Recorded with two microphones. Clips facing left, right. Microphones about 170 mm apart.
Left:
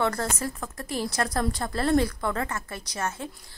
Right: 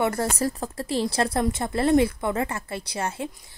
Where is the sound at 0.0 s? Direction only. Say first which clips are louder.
Right 3 dB; 25° right (ahead or behind).